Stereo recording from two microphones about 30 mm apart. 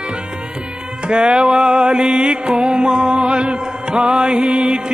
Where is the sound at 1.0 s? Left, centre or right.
Right.